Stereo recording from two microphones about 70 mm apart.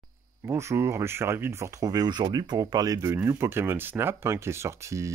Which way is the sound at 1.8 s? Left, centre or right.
Right.